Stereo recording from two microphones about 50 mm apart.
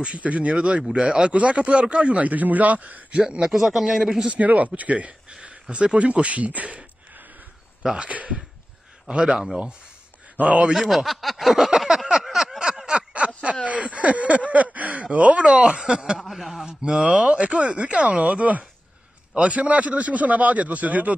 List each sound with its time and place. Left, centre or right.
0.0 s speech: right
3.1 s a man's voice: centre
4.3 s speech: right
7.8 s a man's voice: centre
8.1 s speech: right
9.0 s a man's voice: centre
10.4 s speech: right
10.7 s speech: centre
11.8 s a sound: centre
12.9 s a sound: right
13.7 s a man's voice: right
16.2 s speech: centre
16.6 s speech: centre